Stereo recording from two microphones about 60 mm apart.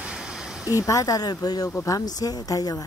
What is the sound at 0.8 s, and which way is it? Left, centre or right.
A woman's voice, left.